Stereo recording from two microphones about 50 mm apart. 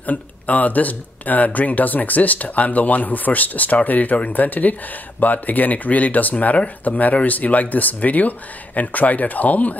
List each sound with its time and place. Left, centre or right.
0.0 s speech: left